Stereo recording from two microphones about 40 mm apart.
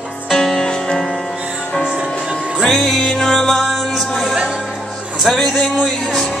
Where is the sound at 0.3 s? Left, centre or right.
Centre.